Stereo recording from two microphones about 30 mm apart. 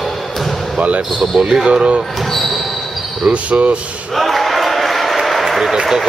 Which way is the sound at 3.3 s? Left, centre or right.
Right.